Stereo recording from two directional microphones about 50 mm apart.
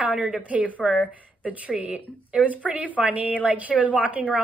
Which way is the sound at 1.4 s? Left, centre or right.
Right.